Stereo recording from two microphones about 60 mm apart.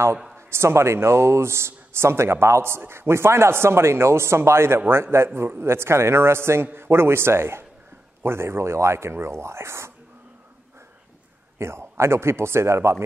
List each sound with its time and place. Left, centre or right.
0.5 s speech: right
11.5 s speech: right